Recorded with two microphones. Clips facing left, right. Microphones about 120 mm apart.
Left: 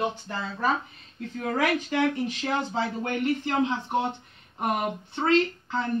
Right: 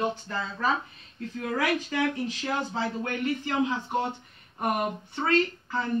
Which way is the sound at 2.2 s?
60° left (ahead or behind).